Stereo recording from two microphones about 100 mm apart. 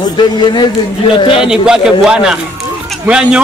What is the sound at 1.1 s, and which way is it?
Speech, 55° left (ahead or behind).